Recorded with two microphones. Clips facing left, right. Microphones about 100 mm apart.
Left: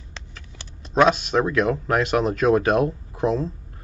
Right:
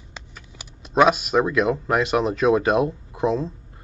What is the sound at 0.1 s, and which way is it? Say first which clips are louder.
Speech: right 1 dB; 10° right (ahead or behind).